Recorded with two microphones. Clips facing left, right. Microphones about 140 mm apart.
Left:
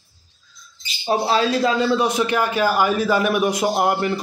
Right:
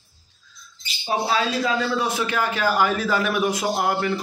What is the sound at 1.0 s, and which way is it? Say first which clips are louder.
Speech: left 4 dB; 40° left (ahead or behind).